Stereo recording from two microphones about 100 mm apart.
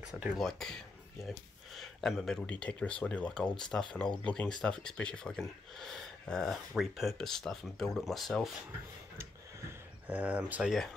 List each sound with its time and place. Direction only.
0.0 s speech: 10° right (ahead or behind)
0.4 s speech: 5° left (ahead or behind)
10.0 s speech: 15° right (ahead or behind)